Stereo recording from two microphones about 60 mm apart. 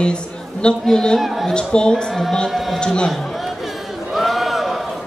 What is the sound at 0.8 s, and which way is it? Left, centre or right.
Speech, centre.